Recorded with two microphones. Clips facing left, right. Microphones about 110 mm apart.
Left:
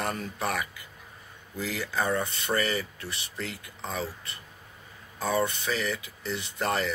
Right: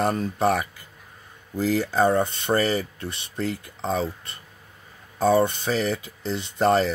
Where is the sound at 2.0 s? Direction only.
30° right (ahead or behind).